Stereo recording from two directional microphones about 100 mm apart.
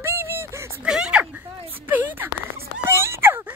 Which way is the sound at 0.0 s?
25° right (ahead or behind).